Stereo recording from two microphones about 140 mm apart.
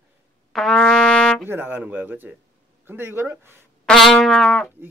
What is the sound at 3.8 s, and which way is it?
Brass instrument, centre (ahead or behind).